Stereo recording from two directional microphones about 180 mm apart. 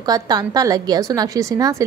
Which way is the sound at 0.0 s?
20° right (ahead or behind).